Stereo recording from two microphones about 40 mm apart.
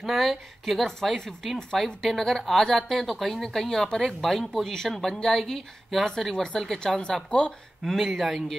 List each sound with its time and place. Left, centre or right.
0.0 s speech: centre
7.0 s speech: left
7.8 s speech: centre